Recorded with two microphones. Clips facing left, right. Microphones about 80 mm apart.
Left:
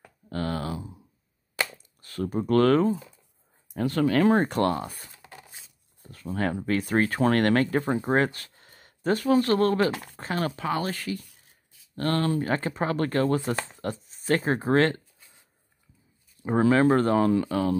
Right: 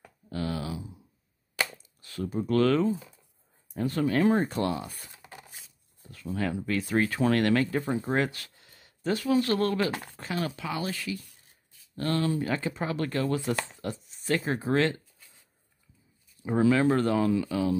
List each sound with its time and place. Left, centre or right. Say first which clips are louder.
0.3 s a sound: left 3 dB; left
2.0 s speech: left 3 dB; left
3.7 s speech: left 3 dB; left
5.1 s a sound: even; centre
6.0 s speech: left 3 dB; left
16.4 s speech: left 3 dB; left